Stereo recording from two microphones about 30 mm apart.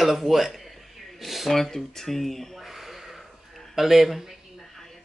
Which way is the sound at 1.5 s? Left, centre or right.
Centre.